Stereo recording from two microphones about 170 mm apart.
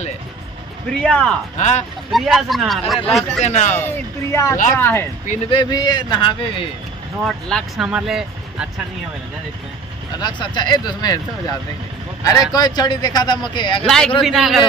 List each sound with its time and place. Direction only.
0.9 s speech: 5° left (ahead or behind)
1.6 s speech: 45° left (ahead or behind)
2.0 s speech: centre (ahead or behind)
3.4 s speech: 40° left (ahead or behind)
3.7 s speech: 15° left (ahead or behind)
5.5 s speech: 25° left (ahead or behind)
7.2 s speech: centre (ahead or behind)
10.2 s speech: 25° left (ahead or behind)
12.5 s speech: 25° left (ahead or behind)
13.8 s speech: centre (ahead or behind)